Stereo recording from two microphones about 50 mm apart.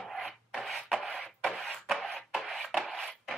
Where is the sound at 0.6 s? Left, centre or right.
Centre.